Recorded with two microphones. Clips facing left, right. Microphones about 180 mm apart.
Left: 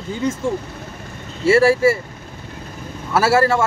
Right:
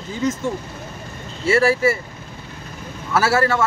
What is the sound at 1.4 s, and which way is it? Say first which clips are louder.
Speech: left 3 dB; 30° left (ahead or behind).